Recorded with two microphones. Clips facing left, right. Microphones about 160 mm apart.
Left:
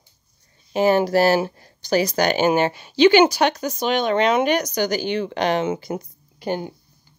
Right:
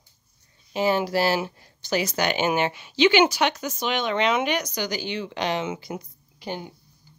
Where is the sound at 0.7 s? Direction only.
50° left (ahead or behind).